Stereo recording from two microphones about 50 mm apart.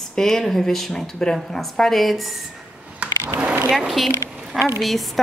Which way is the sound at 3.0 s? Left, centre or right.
Right.